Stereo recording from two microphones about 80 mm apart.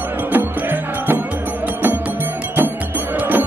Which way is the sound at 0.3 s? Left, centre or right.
Right.